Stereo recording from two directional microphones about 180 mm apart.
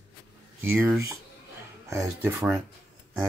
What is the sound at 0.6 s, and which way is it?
Speech, 15° right (ahead or behind).